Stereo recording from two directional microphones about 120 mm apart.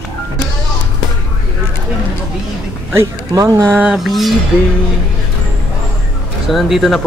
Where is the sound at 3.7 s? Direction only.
5° right (ahead or behind).